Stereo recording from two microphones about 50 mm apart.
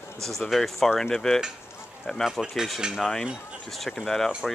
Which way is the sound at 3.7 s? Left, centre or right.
Centre.